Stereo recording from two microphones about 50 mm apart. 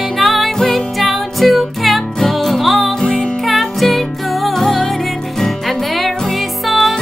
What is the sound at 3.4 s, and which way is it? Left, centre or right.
Music, centre.